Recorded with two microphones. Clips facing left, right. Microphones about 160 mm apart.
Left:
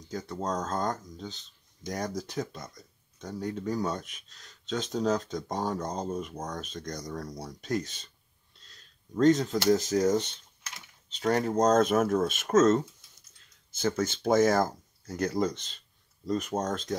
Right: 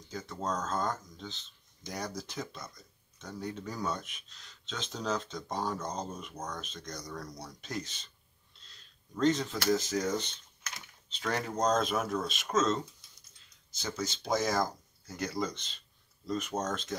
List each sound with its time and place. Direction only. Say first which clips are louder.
0.0 s speech: left 4 dB; 40° left (ahead or behind)
9.1 s speech: left 6 dB; 40° left (ahead or behind)